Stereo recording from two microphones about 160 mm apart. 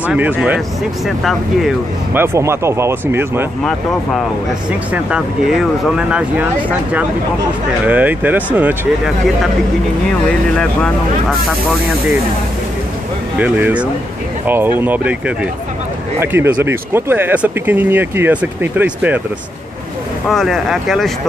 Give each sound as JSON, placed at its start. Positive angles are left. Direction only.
{"t": 0.0, "sound": "speech", "side_deg": -10}
{"t": 2.1, "sound": "speech", "side_deg": -15}
{"t": 4.9, "sound": "speech", "side_deg": -5}
{"t": 7.8, "sound": "speech", "side_deg": -10}
{"t": 10.2, "sound": "speech", "side_deg": 5}
{"t": 13.4, "sound": "speech", "side_deg": -10}
{"t": 20.2, "sound": "speech", "side_deg": 0}